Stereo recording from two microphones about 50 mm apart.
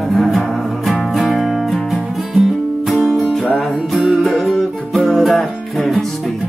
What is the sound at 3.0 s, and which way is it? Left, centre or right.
Music, centre.